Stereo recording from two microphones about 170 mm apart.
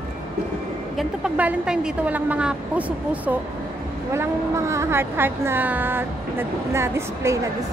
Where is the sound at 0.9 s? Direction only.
5° right (ahead or behind).